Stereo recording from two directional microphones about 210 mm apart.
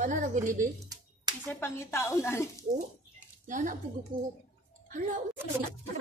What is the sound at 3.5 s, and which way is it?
Speech, 40° right (ahead or behind).